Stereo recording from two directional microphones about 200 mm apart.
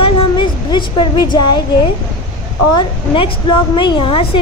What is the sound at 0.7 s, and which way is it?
Speech, 20° left (ahead or behind).